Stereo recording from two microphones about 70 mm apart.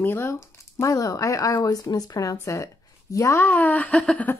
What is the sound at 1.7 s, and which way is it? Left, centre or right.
Speech, left.